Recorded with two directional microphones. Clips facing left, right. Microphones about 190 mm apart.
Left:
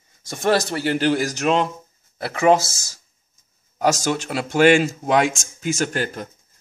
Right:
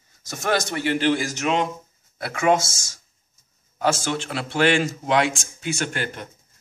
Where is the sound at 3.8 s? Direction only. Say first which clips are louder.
Left 3 dB; 40° left (ahead or behind).